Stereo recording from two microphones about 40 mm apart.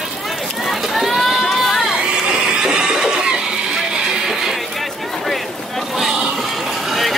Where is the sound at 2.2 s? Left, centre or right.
Right.